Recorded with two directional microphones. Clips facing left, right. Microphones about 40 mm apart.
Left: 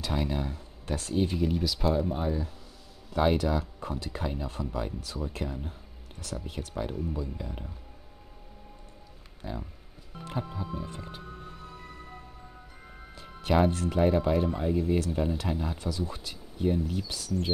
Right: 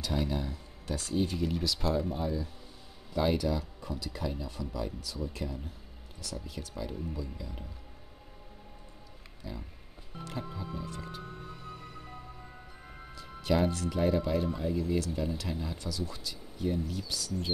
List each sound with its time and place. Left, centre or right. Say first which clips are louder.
0.2 s speech: left 2 dB; left
1.4 s speech: left 4 dB; centre
2.1 s speech: left 3 dB; left
9.4 s speech: left 5 dB; left
10.2 s speech: left 4 dB; centre
13.1 s music: left 2 dB; left
13.7 s speech: left 4 dB; left
16.2 s a sound: left 1 dB; left
16.6 s speech: left 5 dB; left